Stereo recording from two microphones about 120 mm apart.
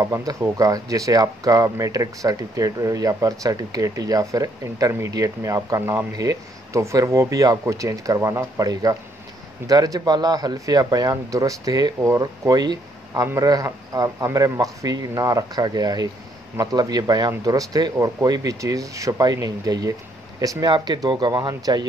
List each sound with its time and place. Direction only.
0.0 s speech: 30° right (ahead or behind)